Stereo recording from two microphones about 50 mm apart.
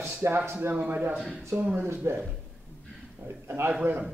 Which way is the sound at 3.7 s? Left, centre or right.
Right.